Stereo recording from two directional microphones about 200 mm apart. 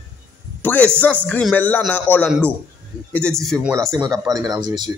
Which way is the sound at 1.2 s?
5° left (ahead or behind).